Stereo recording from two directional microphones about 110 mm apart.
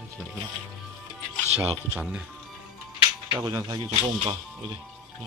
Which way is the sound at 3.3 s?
35° right (ahead or behind).